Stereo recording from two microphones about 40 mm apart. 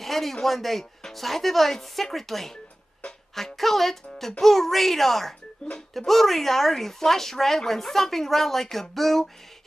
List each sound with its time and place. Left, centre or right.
0.0 s speech: centre